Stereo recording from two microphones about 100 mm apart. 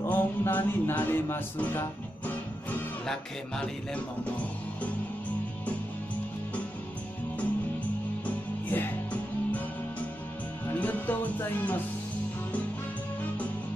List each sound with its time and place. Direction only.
0.0 s music: 20° left (ahead or behind)
3.1 s music: 10° left (ahead or behind)
8.6 s music: 20° left (ahead or behind)
10.7 s music: 15° left (ahead or behind)